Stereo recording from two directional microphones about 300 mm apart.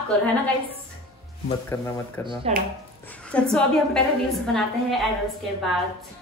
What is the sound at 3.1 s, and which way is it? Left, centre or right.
A woman's voice, centre.